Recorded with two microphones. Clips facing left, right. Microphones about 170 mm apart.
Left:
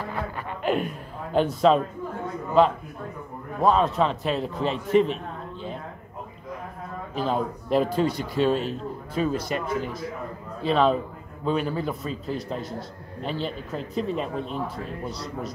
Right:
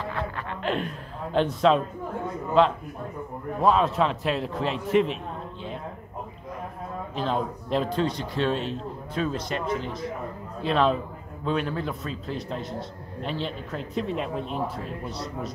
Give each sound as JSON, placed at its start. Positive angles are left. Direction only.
{"t": 0.1, "sound": "a sound", "side_deg": 5}
{"t": 3.6, "sound": "a man's voice", "side_deg": 0}
{"t": 7.2, "sound": "a man's voice", "side_deg": 5}